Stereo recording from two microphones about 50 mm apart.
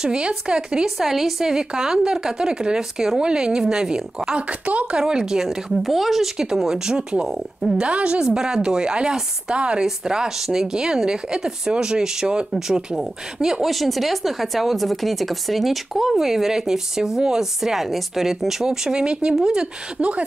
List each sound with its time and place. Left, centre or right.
0.0 s speech: centre
5.0 s speech: centre